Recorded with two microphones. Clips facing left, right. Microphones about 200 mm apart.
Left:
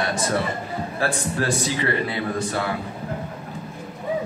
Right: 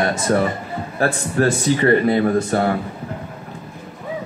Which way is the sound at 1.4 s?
45° right (ahead or behind).